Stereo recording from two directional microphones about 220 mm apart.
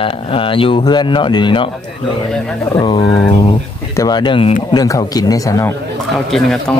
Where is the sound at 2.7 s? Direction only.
25° left (ahead or behind).